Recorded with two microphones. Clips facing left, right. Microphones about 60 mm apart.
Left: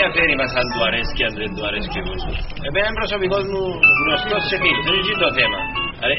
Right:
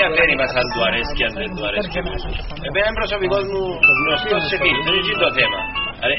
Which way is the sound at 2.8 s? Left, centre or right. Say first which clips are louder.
Right 1 dB; centre.